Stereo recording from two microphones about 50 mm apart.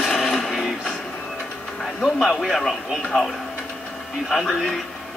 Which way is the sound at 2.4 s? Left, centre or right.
Centre.